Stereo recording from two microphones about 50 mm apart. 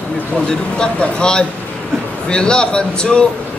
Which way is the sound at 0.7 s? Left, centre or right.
Centre.